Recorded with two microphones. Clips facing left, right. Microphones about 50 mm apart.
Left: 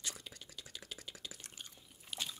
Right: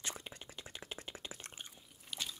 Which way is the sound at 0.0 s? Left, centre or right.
Right.